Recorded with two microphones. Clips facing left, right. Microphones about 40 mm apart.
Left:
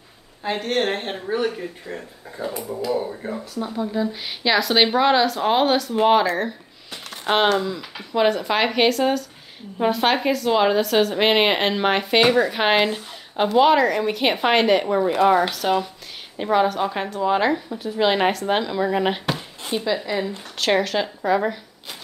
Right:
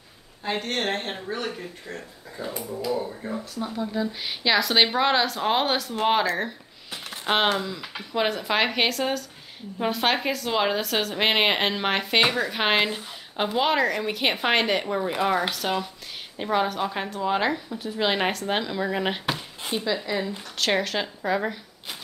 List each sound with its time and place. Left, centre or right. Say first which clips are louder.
0.4 s speech: left 5 dB; centre
2.4 s speech: left 5 dB; left
3.5 s a woman's voice: left 4 dB; centre